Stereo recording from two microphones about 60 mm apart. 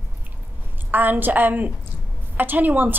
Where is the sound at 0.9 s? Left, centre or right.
Right.